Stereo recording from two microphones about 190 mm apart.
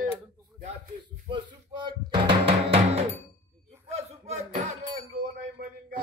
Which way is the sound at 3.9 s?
35° right (ahead or behind).